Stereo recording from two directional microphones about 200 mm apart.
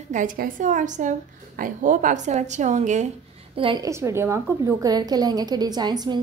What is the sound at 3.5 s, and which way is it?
A woman's voice, 20° right (ahead or behind).